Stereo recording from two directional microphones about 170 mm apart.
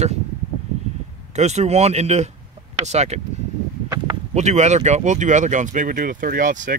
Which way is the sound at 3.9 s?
25° right (ahead or behind).